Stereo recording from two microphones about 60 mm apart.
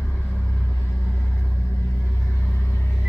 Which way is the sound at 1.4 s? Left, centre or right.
Left.